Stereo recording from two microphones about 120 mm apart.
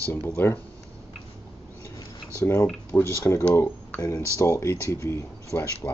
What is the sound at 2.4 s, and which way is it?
Speech, 20° left (ahead or behind).